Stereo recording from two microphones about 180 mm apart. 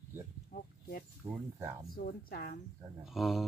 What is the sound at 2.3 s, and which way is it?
Speech, 55° left (ahead or behind).